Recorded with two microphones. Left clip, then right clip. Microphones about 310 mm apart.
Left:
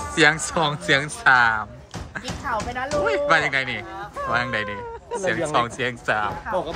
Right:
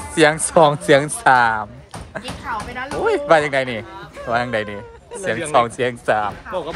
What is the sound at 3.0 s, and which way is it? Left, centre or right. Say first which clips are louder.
Speech: right 5 dB; centre.